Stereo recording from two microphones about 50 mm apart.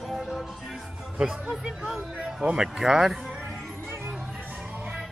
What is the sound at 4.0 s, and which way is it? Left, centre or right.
Music, centre.